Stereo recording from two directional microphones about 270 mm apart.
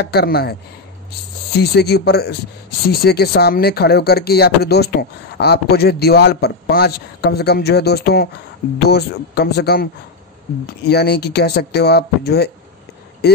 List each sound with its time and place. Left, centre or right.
0.0 s a man's voice: left
10.9 s a man's voice: left